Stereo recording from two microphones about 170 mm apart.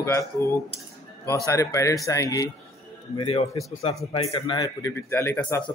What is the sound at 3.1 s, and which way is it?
Speech, 35° left (ahead or behind).